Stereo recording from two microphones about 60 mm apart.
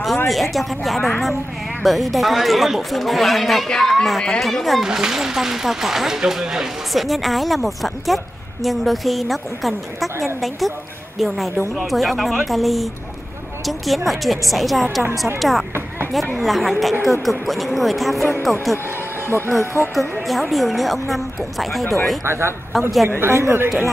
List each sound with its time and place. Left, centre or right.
0.3 s speech: centre
4.8 s speech: centre
19.9 s speech: centre
23.0 s speech: right